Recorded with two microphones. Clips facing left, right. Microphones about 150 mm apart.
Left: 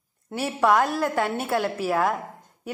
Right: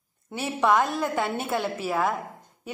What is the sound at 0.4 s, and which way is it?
A woman's voice, 10° left (ahead or behind).